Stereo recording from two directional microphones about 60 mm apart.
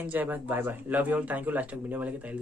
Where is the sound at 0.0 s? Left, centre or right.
Right.